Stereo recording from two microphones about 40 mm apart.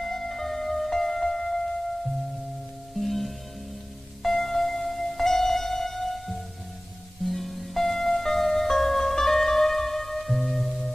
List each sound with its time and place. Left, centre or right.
0.0 s music: centre
3.0 s music: centre